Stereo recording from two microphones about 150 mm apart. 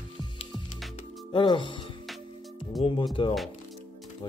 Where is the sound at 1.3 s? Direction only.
35° left (ahead or behind).